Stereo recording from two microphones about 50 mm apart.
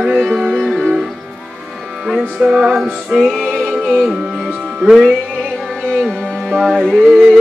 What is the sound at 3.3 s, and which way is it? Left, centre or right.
Music, centre.